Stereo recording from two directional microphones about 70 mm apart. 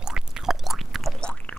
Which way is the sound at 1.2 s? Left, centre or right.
Centre.